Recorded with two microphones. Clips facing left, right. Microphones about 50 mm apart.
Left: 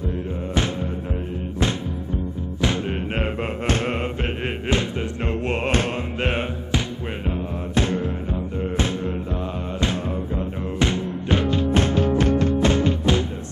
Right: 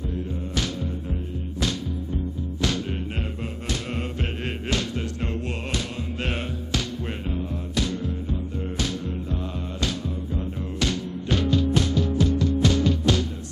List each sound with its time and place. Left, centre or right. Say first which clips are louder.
2.6 s music: left 3 dB; left
3.6 s chant: left 7 dB; left
5.3 s music: left 7 dB; left